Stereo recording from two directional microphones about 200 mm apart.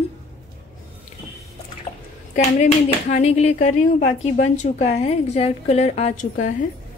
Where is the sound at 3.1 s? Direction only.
35° left (ahead or behind).